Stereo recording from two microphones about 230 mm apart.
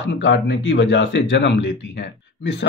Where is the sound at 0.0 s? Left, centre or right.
Left.